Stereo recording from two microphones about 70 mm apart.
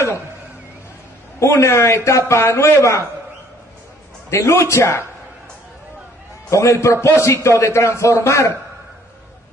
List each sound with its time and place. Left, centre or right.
1.4 s a man's voice: left
4.3 s a man's voice: left
6.5 s a man's voice: left